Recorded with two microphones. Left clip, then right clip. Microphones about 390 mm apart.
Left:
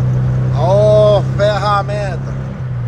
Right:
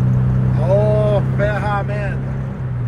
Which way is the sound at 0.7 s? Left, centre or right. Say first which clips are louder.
Left 7 dB; left.